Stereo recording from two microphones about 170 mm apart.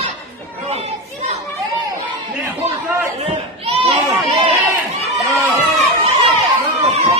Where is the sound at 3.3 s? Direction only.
35° right (ahead or behind).